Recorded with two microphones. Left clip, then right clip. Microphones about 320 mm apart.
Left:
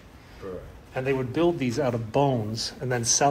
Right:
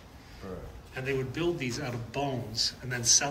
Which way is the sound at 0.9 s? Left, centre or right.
Centre.